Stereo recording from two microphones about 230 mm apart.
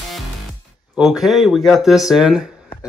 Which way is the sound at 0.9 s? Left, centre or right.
Centre.